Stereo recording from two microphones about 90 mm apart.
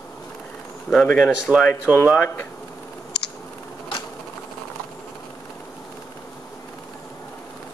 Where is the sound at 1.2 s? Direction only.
5° right (ahead or behind).